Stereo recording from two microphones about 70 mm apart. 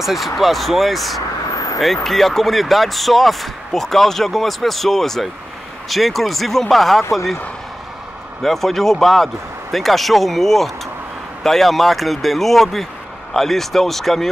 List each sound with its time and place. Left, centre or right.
0.0 s speech: centre
1.5 s vehicle: left
2.0 s speech: centre
8.4 s speech: centre